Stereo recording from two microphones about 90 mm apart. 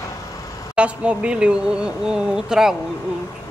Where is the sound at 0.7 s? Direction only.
15° right (ahead or behind).